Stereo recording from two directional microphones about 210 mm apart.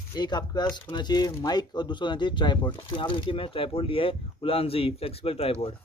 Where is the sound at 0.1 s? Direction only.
20° left (ahead or behind).